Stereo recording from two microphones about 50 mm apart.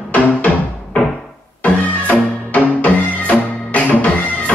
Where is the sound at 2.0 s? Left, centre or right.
Left.